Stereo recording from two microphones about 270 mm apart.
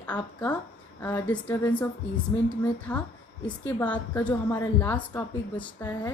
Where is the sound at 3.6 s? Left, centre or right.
Centre.